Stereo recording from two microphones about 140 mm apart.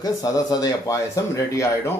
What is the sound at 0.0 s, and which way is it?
Speech, 25° left (ahead or behind).